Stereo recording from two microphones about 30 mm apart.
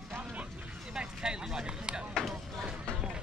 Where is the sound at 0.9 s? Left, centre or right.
Right.